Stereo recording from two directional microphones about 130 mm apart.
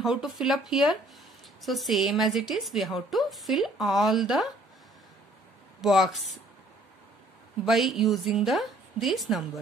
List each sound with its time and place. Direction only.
0.0 s a woman's voice: 5° right (ahead or behind)
5.8 s a woman's voice: centre (ahead or behind)
7.6 s a woman's voice: centre (ahead or behind)